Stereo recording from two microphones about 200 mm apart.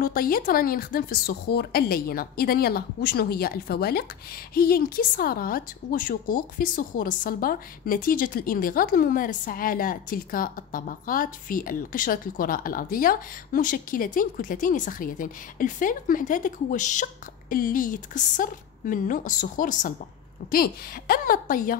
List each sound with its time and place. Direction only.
0.0 s a woman's voice: 45° left (ahead or behind)